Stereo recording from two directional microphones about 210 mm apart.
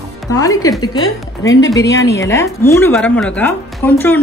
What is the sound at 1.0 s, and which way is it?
Speech, 60° left (ahead or behind).